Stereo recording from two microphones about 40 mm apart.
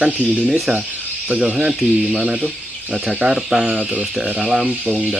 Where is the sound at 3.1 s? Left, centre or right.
Centre.